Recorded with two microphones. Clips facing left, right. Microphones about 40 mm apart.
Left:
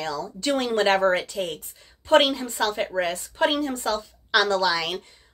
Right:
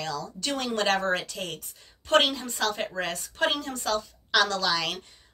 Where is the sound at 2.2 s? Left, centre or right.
Centre.